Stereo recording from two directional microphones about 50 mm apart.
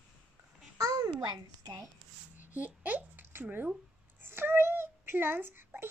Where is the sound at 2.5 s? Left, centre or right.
Right.